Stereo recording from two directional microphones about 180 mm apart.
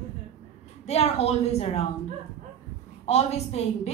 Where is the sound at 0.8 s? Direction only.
35° left (ahead or behind).